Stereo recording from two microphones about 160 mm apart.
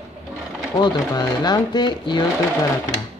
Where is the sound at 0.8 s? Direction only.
25° left (ahead or behind).